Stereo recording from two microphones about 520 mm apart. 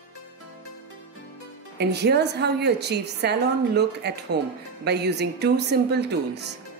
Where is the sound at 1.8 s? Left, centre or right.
Centre.